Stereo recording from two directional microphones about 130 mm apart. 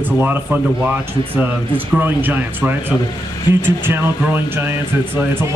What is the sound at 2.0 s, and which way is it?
Speech, 15° right (ahead or behind).